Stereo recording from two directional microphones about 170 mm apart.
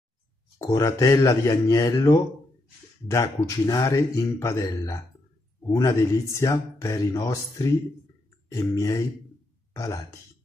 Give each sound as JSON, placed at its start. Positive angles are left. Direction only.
{"t": 0.7, "sound": "speech", "side_deg": 20}